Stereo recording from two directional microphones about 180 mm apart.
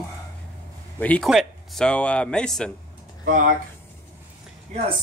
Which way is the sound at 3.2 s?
50° right (ahead or behind).